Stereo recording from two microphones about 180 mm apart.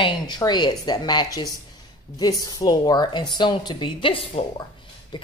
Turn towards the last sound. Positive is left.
turn(degrees=25)  # may be behind; listen again after turning